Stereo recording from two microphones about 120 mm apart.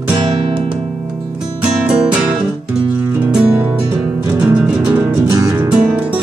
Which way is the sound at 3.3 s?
15° right (ahead or behind).